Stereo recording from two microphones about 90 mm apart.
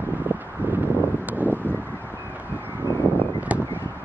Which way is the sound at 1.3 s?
20° right (ahead or behind).